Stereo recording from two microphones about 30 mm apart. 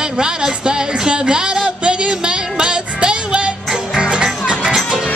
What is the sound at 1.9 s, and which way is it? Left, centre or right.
Music, right.